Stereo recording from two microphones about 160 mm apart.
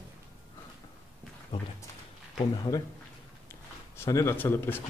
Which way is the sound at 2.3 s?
25° left (ahead or behind).